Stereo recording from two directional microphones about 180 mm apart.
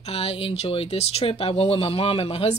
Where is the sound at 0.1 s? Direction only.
35° left (ahead or behind).